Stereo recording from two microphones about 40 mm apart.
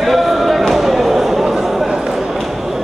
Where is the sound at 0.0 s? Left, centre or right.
Centre.